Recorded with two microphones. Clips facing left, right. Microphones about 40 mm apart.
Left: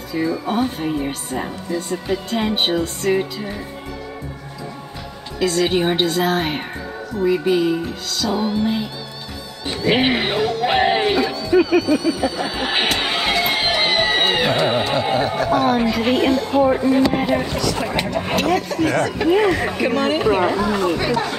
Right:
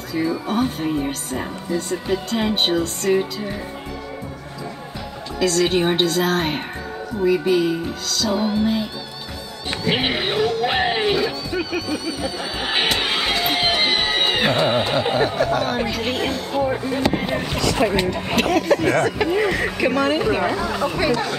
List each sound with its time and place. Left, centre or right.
0.1 s speech: centre
5.4 s speech: centre
8.3 s speech: centre
9.8 s music: centre
14.7 s speech: centre
17.8 s speech: right
18.8 s speech: centre
19.2 s speech: centre